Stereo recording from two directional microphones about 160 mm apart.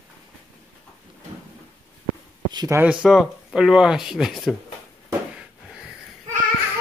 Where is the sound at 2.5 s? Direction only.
25° right (ahead or behind).